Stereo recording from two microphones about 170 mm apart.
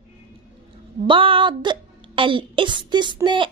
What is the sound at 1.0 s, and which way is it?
A woman's voice, 30° right (ahead or behind).